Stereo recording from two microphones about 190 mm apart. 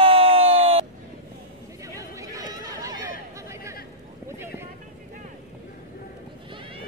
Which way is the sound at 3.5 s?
15° right (ahead or behind).